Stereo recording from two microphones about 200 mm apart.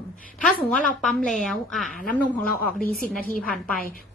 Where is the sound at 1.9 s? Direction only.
45° left (ahead or behind).